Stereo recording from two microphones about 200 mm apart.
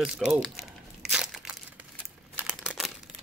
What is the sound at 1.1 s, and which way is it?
Crunch, 5° right (ahead or behind).